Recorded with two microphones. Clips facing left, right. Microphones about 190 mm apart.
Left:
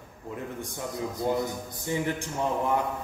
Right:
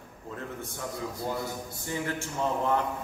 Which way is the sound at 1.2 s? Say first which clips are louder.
Left 8 dB; 20° left (ahead or behind).